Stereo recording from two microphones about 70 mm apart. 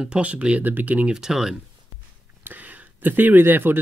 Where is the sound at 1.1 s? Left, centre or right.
Centre.